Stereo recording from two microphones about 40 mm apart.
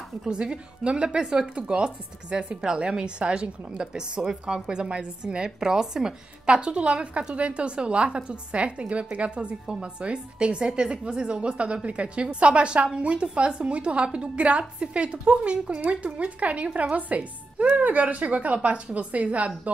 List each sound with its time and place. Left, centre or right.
0.3 s a woman's voice: right